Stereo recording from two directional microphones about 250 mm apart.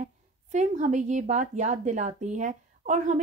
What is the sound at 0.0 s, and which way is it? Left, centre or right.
A woman's voice, right.